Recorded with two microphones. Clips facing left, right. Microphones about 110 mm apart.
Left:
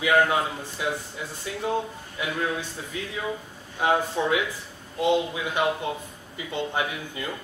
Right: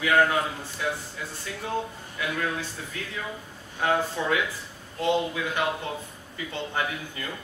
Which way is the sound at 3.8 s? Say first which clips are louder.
Left 2 dB; 15° left (ahead or behind).